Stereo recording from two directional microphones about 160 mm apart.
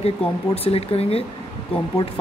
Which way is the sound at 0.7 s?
40° left (ahead or behind).